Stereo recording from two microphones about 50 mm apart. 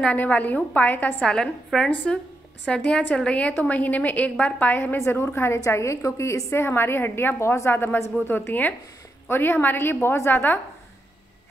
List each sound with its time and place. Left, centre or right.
0.1 s a woman's voice: left
1.2 s a woman's voice: centre
3.5 s a woman's voice: left
4.9 s a woman's voice: left
5.6 s a woman's voice: left
7.7 s a woman's voice: left